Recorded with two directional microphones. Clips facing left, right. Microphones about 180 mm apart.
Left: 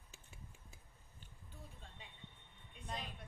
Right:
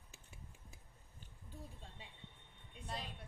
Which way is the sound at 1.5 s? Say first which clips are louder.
Right 4 dB; 35° right (ahead or behind).